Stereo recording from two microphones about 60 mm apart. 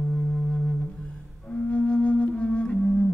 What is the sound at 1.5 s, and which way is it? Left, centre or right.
Flute, centre.